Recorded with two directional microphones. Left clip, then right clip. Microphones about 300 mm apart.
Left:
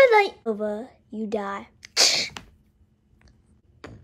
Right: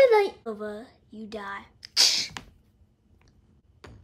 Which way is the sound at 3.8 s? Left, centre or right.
Centre.